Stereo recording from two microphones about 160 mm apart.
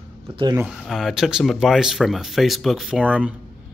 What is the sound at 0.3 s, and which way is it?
Speech, 35° right (ahead or behind).